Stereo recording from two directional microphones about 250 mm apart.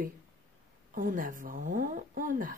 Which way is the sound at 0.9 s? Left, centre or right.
Right.